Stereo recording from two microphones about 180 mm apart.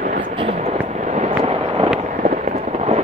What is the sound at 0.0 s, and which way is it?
Vehicle, 50° right (ahead or behind).